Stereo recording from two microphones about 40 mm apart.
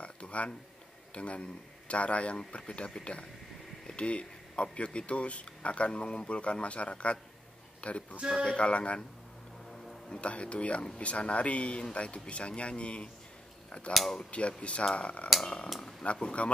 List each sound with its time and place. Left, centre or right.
0.0 s a sound: left
1.1 s speech: left
9.8 s music: centre
10.2 s speech: left